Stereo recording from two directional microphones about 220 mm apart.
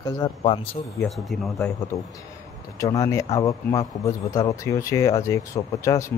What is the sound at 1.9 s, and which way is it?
Speech, 15° left (ahead or behind).